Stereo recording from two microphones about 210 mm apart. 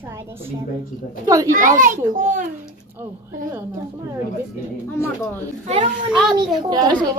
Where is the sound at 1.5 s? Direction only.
40° right (ahead or behind).